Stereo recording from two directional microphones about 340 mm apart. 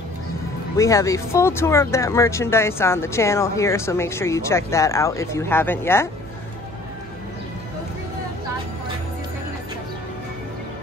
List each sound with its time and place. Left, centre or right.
0.7 s speech: centre